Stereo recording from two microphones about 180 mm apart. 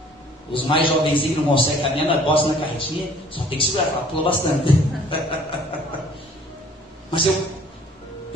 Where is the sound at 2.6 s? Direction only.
30° left (ahead or behind).